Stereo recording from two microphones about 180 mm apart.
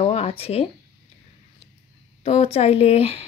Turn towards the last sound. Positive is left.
turn(degrees=35)  # may be behind; listen again after turning